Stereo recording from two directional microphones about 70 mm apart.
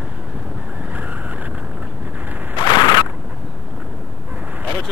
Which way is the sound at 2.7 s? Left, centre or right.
Left.